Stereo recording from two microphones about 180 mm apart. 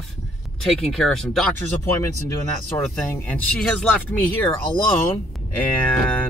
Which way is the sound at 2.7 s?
15° left (ahead or behind).